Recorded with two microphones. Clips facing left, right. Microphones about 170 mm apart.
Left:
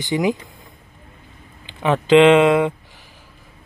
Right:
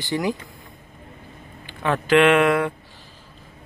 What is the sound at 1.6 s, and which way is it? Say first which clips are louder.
Speech: left 5 dB; 20° left (ahead or behind).